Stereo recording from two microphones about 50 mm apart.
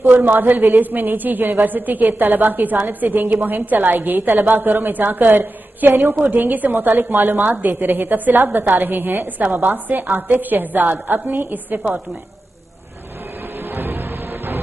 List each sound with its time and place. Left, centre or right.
0.0 s a woman's voice: right
13.6 s music: right